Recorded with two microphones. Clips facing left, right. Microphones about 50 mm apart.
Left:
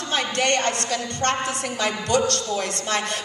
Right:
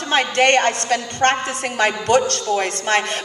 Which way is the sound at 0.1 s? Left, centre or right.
Right.